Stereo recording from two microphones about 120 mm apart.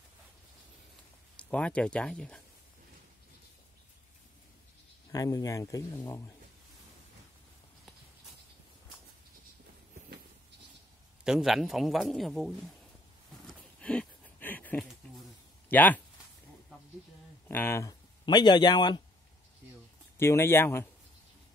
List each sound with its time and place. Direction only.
1.3 s speech: 10° left (ahead or behind)
5.1 s speech: 30° left (ahead or behind)
11.2 s a man's voice: 5° right (ahead or behind)
13.5 s a sound: 10° left (ahead or behind)
15.7 s speech: 15° left (ahead or behind)
17.5 s speech: 20° left (ahead or behind)
18.2 s speech: 40° left (ahead or behind)
20.2 s speech: 20° left (ahead or behind)